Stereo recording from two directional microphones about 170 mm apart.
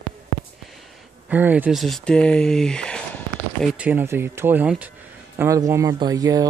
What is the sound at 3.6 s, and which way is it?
Speech, 5° right (ahead or behind).